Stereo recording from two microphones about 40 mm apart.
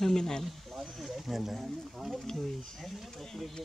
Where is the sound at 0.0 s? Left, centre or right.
Centre.